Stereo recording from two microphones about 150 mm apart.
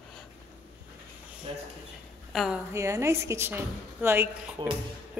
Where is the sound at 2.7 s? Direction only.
20° right (ahead or behind).